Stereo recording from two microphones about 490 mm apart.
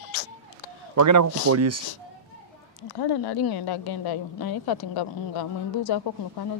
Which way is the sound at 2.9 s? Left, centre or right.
Left.